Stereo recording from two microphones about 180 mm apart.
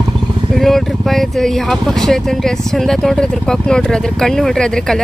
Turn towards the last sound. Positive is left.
turn(degrees=5)  # may be behind; listen again after turning